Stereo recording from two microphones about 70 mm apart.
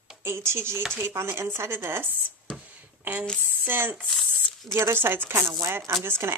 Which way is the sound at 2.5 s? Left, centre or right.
Centre.